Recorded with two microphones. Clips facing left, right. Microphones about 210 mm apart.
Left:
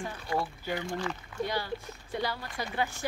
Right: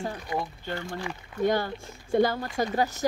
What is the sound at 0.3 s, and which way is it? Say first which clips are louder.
Speech: left 1 dB; 20° right (ahead or behind).